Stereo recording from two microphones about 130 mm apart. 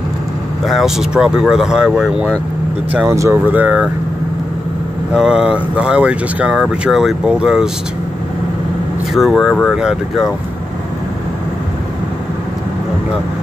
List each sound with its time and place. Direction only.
0.7 s speech: centre (ahead or behind)
3.1 s speech: 20° right (ahead or behind)
5.1 s speech: 5° right (ahead or behind)
9.1 s speech: centre (ahead or behind)